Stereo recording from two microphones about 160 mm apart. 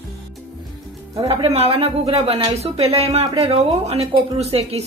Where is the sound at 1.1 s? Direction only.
35° right (ahead or behind).